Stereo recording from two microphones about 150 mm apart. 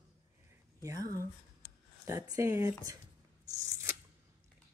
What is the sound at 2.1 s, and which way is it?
Speech, 20° right (ahead or behind).